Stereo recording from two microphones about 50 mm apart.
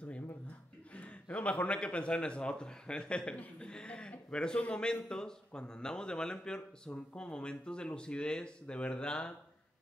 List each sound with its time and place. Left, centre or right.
0.9 s a man's voice: left